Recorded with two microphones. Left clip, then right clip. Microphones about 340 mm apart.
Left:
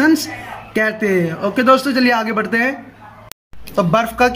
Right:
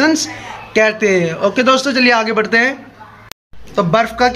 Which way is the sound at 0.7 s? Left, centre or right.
Centre.